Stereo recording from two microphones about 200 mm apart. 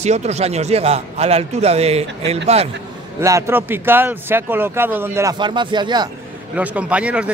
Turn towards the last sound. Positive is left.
turn(degrees=-5)  # may be behind; listen again after turning